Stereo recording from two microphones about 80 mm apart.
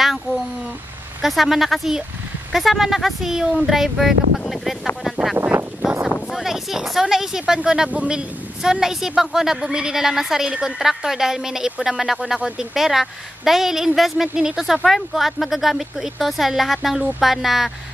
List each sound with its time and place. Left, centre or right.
1.2 s a woman's voice: centre
5.4 s a sound: right
6.3 s a woman's voice: centre